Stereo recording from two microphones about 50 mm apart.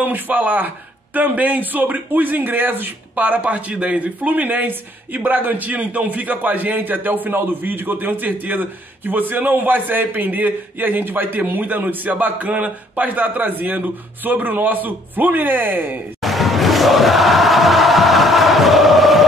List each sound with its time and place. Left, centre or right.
0.0 s speech: right
16.2 s music: centre